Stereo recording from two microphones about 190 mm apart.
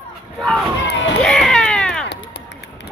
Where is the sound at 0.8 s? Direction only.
65° left (ahead or behind).